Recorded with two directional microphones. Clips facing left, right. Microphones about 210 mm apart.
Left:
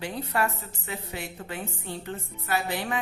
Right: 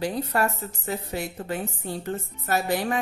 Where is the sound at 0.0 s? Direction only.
40° right (ahead or behind).